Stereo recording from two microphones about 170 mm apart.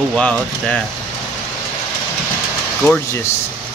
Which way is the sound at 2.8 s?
10° left (ahead or behind).